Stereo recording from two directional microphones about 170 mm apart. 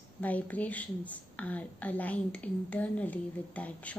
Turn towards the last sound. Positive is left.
turn(degrees=10)  # may be behind; listen again after turning